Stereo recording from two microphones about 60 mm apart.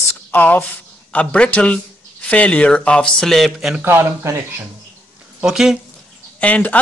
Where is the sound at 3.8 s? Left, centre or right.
Right.